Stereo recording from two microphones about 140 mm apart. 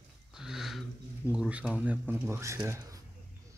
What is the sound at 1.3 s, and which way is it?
Speech, 10° right (ahead or behind).